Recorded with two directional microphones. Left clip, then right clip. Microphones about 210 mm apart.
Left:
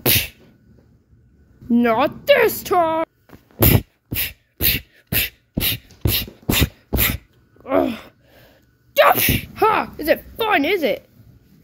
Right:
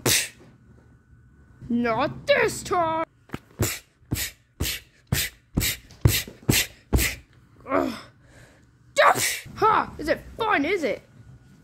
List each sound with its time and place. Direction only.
0.0 s sneeze: centre (ahead or behind)
1.7 s a woman's voice: 15° left (ahead or behind)
3.5 s beatboxing: 25° left (ahead or behind)
4.1 s beatboxing: 10° left (ahead or behind)
4.6 s beatboxing: 20° left (ahead or behind)
5.2 s beatboxing: 10° left (ahead or behind)
7.6 s gasp: 10° left (ahead or behind)
8.4 s sneeze: 5° left (ahead or behind)